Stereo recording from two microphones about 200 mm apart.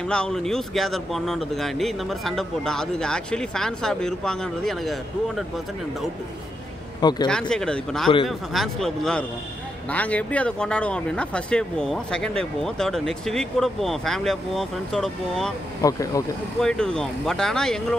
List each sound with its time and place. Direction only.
0.0 s speech: 5° left (ahead or behind)
7.0 s speech: 20° left (ahead or behind)
7.2 s speech: 5° left (ahead or behind)
15.8 s speech: 15° left (ahead or behind)
16.6 s speech: 5° left (ahead or behind)